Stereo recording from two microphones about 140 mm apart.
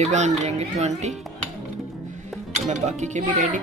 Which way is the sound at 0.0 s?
55° right (ahead or behind).